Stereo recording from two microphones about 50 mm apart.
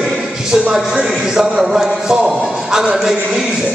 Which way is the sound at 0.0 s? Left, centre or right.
Centre.